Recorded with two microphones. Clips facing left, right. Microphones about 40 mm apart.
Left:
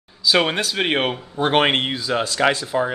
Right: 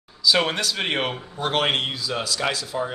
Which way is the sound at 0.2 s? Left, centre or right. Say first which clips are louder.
Left 2 dB; centre.